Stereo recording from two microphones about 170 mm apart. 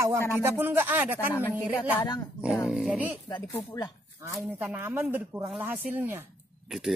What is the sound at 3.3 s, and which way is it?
Speech, 25° left (ahead or behind).